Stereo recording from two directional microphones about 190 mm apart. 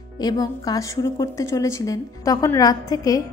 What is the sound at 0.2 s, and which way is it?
A woman's voice, 20° left (ahead or behind).